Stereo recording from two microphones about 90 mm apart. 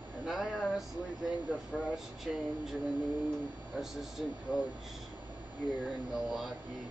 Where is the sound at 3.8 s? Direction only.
5° right (ahead or behind).